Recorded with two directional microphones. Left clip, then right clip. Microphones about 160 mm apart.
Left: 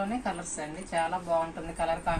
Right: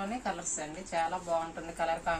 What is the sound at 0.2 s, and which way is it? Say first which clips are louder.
A woman's voice: left 2 dB; 10° right (ahead or behind).